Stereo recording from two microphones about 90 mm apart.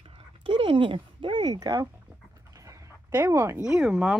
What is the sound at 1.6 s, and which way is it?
Speech, 45° right (ahead or behind).